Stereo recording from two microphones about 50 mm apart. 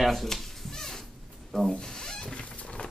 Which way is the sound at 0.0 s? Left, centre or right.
Centre.